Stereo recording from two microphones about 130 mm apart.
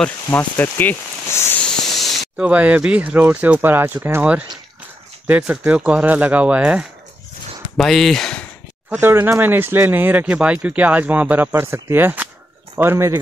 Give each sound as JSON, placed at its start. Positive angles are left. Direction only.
{"t": 0.0, "sound": "speech", "side_deg": 10}
{"t": 2.0, "sound": "spray", "side_deg": 0}
{"t": 2.4, "sound": "speech", "side_deg": -10}
{"t": 7.7, "sound": "speech", "side_deg": 5}
{"t": 8.9, "sound": "speech", "side_deg": -15}